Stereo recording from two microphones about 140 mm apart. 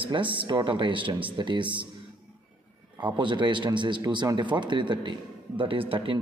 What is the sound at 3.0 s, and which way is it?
A man's voice, 35° right (ahead or behind).